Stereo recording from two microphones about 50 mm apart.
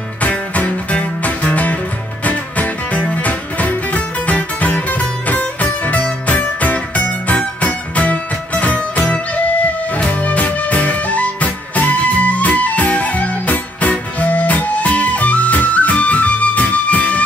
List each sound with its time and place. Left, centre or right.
0.2 s music: left